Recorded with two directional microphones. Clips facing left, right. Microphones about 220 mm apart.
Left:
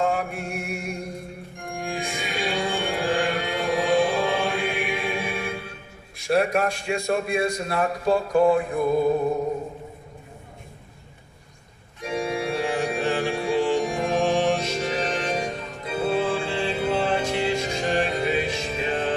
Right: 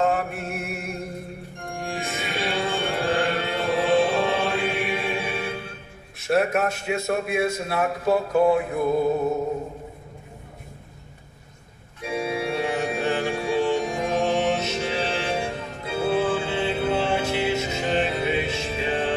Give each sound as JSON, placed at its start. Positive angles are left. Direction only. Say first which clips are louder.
{"t": 0.0, "sound": "mantra", "louder": "right 1 dB", "side_deg": 0}
{"t": 1.8, "sound": "music", "louder": "even", "side_deg": 0}
{"t": 6.1, "sound": "a man's voice", "louder": "even", "side_deg": -5}
{"t": 12.0, "sound": "organ", "louder": "even", "side_deg": -5}
{"t": 13.9, "sound": "music", "louder": "left 1 dB", "side_deg": -20}
{"t": 14.8, "sound": "music", "louder": "even", "side_deg": -10}
{"t": 15.2, "sound": "organ", "louder": "even", "side_deg": -5}
{"t": 15.8, "sound": "music", "louder": "right 1 dB", "side_deg": -5}